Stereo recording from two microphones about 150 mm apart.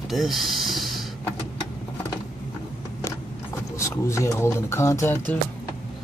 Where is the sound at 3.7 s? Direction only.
20° left (ahead or behind).